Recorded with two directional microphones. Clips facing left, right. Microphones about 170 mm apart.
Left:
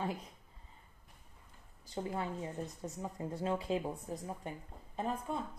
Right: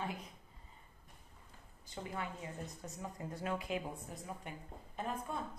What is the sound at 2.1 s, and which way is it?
A woman's voice, 30° left (ahead or behind).